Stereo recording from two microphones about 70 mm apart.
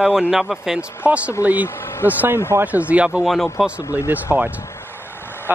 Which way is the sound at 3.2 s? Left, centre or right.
Centre.